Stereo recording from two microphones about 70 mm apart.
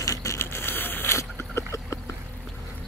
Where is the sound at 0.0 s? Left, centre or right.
Left.